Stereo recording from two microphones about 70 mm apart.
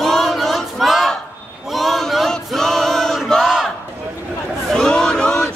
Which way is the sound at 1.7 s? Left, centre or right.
Centre.